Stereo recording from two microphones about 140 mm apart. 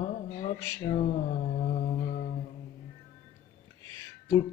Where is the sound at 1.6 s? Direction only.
55° left (ahead or behind).